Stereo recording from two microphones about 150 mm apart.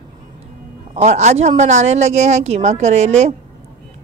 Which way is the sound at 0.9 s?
50° right (ahead or behind).